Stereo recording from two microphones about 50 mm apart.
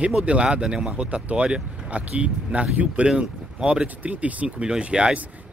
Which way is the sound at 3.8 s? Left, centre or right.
Right.